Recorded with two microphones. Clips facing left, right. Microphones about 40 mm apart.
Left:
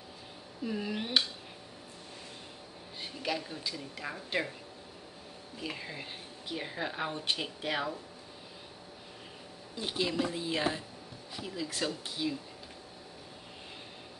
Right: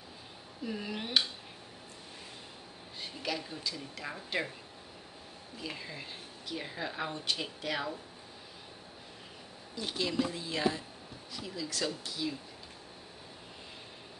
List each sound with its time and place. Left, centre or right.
0.7 s speech: centre
3.0 s speech: centre
5.6 s a woman's voice: centre
9.8 s a woman's voice: centre